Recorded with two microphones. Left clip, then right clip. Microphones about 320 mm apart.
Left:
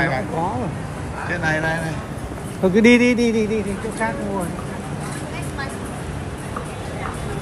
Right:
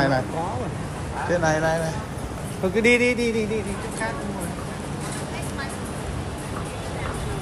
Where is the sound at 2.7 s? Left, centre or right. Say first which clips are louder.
Left 4 dB; centre.